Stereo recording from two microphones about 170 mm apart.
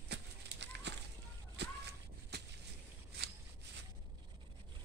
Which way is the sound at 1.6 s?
90° right.